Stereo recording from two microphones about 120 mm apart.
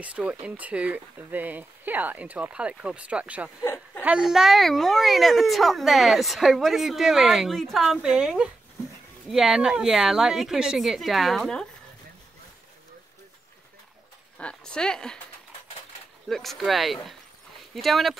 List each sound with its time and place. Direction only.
0.0 s speech: 10° right (ahead or behind)
3.6 s a sound: 20° left (ahead or behind)
4.0 s a child's voice: 5° right (ahead or behind)
14.4 s speech: 10° left (ahead or behind)
16.3 s a child's voice: centre (ahead or behind)